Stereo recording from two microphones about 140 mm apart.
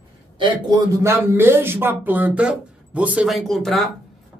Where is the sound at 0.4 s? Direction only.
30° right (ahead or behind).